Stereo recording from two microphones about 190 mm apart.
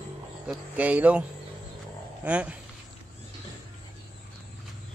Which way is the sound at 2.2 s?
5° right (ahead or behind).